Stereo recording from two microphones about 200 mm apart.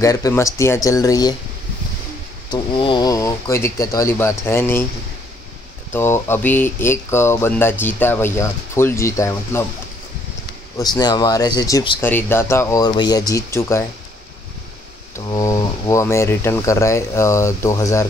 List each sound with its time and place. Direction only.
0.0 s speech: 15° left (ahead or behind)
2.5 s speech: 25° left (ahead or behind)
5.9 s speech: 10° left (ahead or behind)
10.8 s speech: 20° left (ahead or behind)
12.0 s speech: 10° left (ahead or behind)
15.1 s speech: 15° left (ahead or behind)